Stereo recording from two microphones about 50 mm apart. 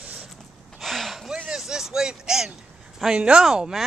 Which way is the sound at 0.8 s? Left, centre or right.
Centre.